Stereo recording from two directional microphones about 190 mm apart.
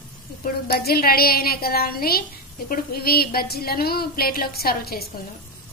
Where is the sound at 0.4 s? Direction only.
55° left (ahead or behind).